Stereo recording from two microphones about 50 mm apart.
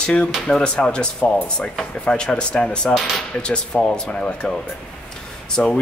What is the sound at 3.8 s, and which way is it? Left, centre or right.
Speech, centre.